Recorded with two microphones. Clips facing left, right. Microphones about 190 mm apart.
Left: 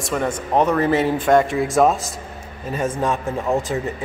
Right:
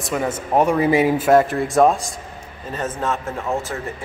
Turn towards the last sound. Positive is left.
turn(degrees=15)  # may be behind; listen again after turning